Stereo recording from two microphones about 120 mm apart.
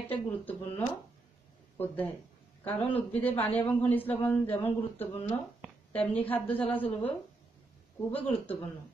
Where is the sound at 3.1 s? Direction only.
15° left (ahead or behind).